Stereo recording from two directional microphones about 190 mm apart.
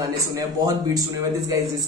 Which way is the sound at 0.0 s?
20° right (ahead or behind).